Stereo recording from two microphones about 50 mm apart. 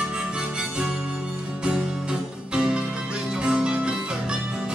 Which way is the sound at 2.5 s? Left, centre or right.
Centre.